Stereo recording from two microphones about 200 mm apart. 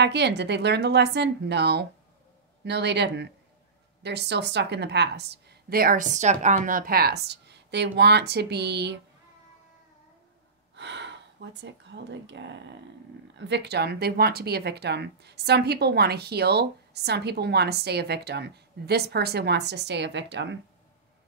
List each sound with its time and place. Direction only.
0.0 s speech: 60° right (ahead or behind)
10.8 s speech: 60° right (ahead or behind)